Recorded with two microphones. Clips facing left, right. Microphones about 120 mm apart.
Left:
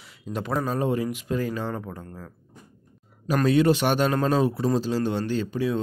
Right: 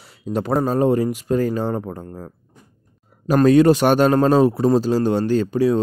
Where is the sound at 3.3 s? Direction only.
45° right (ahead or behind).